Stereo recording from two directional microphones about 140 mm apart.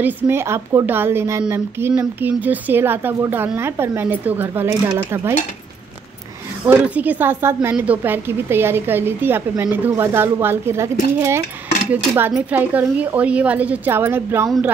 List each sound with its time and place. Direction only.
0.0 s speech: 15° right (ahead or behind)
6.6 s speech: 10° right (ahead or behind)